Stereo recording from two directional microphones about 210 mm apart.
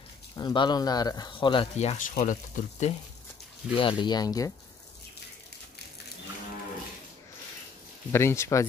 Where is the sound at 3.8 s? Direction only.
25° left (ahead or behind).